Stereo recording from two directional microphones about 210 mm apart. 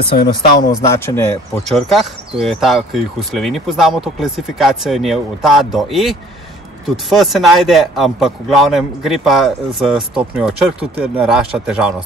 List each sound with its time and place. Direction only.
0.0 s speech: 25° left (ahead or behind)
1.7 s speech: centre (ahead or behind)